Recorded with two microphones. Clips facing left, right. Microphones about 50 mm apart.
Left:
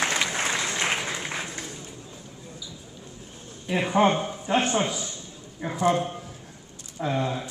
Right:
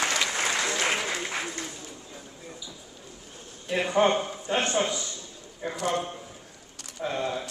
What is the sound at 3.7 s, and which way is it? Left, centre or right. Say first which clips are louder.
A man's voice: left 1 dB; centre.